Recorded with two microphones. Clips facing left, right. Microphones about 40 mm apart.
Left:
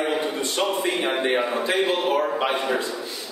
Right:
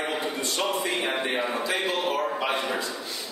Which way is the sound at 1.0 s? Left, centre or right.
Centre.